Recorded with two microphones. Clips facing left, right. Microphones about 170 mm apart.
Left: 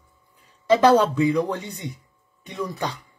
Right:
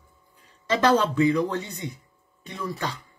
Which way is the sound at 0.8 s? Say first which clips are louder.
Left 1 dB; 10° left (ahead or behind).